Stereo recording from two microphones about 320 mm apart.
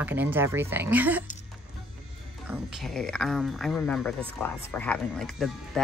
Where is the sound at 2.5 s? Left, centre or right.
Centre.